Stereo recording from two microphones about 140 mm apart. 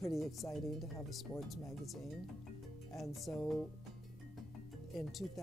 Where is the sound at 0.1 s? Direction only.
Centre (ahead or behind).